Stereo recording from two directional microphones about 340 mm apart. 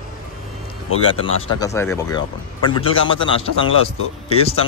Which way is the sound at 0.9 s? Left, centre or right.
Centre.